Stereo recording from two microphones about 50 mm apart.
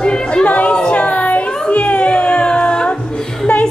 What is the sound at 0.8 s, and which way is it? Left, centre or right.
Music, left.